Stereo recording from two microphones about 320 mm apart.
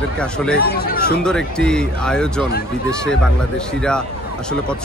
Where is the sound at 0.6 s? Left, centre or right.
Left.